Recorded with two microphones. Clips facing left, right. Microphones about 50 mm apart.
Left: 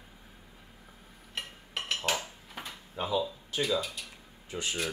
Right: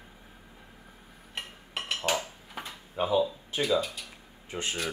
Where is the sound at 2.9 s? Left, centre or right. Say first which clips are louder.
Right 4 dB; right.